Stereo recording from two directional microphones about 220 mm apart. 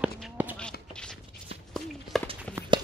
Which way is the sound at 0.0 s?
5° right (ahead or behind).